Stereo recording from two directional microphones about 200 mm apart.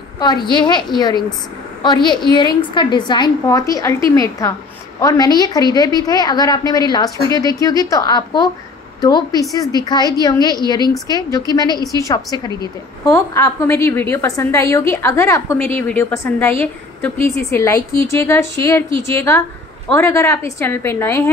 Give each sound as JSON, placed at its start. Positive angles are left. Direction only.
{"t": 0.5, "sound": "a woman's voice", "side_deg": 20}